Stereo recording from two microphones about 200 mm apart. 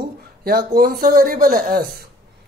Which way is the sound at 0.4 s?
50° right (ahead or behind).